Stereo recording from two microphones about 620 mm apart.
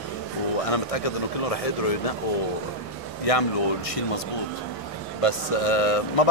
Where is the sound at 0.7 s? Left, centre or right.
Left.